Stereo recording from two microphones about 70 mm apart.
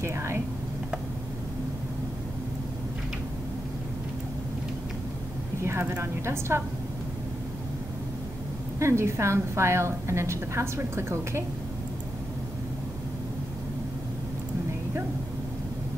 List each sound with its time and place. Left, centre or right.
0.0 s speech: right
5.6 s a woman's voice: right
8.7 s a woman's voice: right